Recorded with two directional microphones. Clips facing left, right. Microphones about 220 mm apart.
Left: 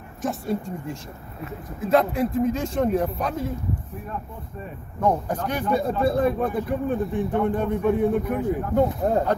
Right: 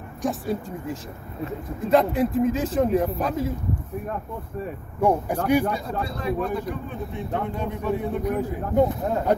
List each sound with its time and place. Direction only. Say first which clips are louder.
0.2 s speech: even; centre (ahead or behind)
5.0 s speech: right 2 dB; 10° right (ahead or behind)
5.7 s a man's voice: left 7 dB; 55° left (ahead or behind)
9.0 s speech: left 4 dB; 40° left (ahead or behind)